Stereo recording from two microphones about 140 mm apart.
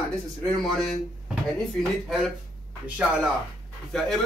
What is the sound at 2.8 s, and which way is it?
Speech, 10° right (ahead or behind).